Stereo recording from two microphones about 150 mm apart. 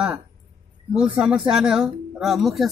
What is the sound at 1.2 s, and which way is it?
Speech, 5° right (ahead or behind).